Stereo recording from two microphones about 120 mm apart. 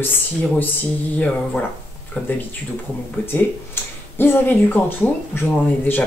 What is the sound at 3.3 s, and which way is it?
Speech, 15° left (ahead or behind).